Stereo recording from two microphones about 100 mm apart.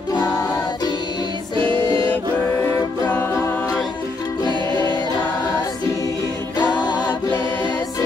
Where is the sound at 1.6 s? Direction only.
55° right (ahead or behind).